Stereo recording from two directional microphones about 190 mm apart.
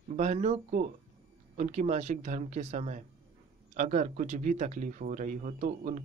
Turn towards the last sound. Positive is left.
turn(degrees=-40)  # may be behind; listen again after turning